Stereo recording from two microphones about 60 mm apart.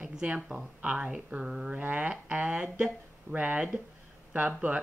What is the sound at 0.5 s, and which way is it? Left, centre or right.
Speech, centre.